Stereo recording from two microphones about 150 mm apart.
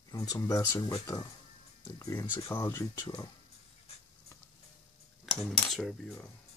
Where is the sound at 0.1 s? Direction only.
25° left (ahead or behind).